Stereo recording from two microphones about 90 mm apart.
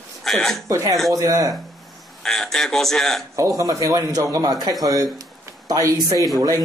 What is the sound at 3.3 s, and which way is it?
A man's voice, 35° right (ahead or behind).